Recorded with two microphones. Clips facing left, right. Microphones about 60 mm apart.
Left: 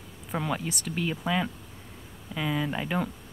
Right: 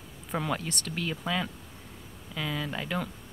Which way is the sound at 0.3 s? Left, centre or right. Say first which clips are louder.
Left 1 dB; centre.